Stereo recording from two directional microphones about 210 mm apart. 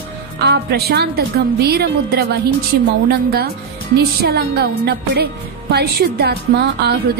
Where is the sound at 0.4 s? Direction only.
50° right (ahead or behind).